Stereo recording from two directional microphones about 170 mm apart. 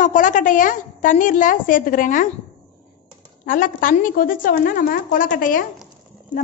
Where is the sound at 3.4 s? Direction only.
50° left (ahead or behind).